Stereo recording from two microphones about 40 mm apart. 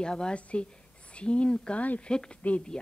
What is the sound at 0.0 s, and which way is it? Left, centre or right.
Speech, left.